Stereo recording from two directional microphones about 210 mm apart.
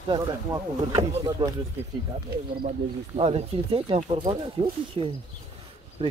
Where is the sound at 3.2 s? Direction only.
25° right (ahead or behind).